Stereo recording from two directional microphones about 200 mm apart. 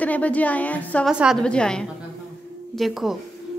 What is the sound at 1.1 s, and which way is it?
A woman's voice, 5° right (ahead or behind).